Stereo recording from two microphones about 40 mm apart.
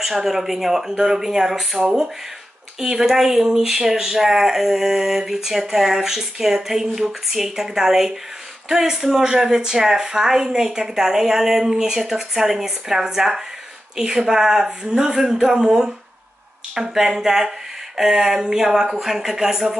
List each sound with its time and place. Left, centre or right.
0.0 s speech: centre